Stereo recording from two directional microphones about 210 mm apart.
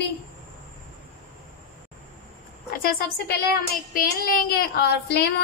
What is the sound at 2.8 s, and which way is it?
Speech, 45° left (ahead or behind).